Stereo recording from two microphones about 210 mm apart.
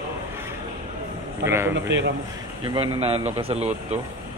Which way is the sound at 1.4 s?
10° right (ahead or behind).